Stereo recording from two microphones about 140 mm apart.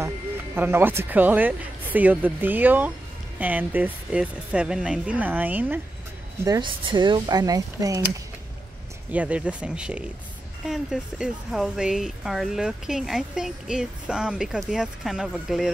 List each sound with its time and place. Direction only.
0.6 s speech: 15° right (ahead or behind)
6.6 s speech: 35° right (ahead or behind)
9.1 s speech: 10° right (ahead or behind)